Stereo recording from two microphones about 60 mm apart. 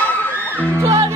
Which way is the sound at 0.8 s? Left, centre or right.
Right.